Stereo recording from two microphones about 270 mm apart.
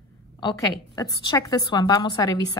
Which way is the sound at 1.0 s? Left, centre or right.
Centre.